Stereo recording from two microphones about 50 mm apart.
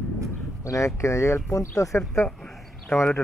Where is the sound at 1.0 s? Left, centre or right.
Left.